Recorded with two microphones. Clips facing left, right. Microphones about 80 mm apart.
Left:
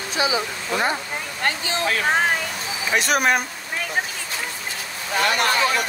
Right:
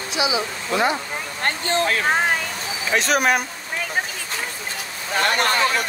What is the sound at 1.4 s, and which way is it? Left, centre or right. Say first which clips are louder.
Speech: right 2 dB; right.